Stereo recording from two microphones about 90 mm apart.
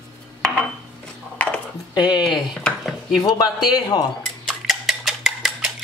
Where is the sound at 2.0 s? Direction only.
55° left (ahead or behind).